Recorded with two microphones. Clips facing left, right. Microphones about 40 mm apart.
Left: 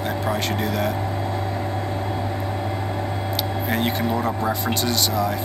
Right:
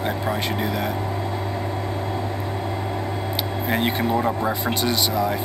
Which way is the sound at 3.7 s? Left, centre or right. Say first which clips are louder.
Right 2 dB; centre.